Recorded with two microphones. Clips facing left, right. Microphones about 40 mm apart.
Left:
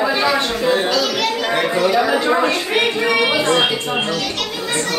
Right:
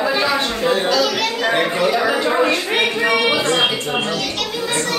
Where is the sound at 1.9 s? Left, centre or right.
Centre.